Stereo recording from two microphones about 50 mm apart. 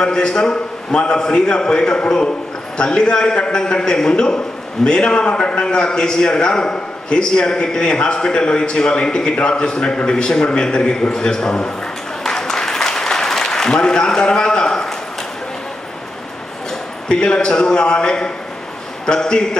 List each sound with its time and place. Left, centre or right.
0.0 s a man's voice: centre
12.2 s applause: centre
17.1 s a man's voice: left